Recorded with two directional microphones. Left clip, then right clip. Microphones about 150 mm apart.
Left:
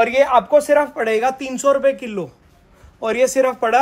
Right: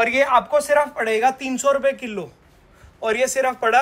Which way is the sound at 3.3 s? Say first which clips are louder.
Left 3 dB; 90° left.